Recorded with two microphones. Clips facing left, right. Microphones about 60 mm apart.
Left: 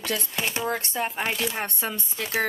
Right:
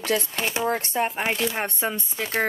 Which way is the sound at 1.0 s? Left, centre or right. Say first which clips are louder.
Right 2 dB; centre.